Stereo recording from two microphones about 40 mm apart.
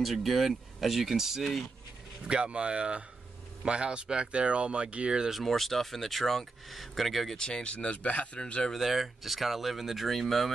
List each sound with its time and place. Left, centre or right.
0.0 s speech: centre
2.2 s speech: right
5.3 s speech: centre
7.3 s speech: left
8.7 s speech: centre